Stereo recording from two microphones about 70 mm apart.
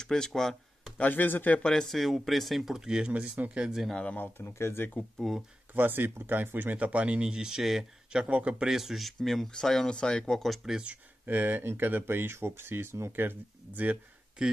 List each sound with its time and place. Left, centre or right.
0.0 s speech: centre
0.9 s speech: left
1.6 s speech: centre
3.1 s speech: centre
3.9 s speech: centre
4.2 s speech: left
5.1 s speech: centre
5.8 s speech: right
8.7 s speech: centre
10.4 s speech: centre
10.8 s speech: right
14.4 s speech: centre